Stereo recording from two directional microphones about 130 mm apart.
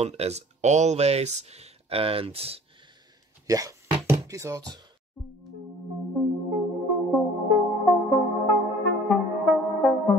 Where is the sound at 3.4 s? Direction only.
25° right (ahead or behind).